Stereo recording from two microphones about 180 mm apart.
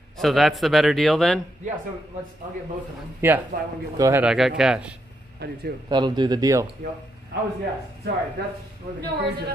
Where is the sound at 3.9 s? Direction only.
20° right (ahead or behind).